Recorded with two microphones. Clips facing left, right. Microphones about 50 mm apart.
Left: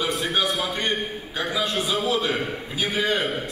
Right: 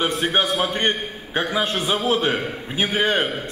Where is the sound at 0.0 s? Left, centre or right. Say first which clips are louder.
Right 3 dB; right.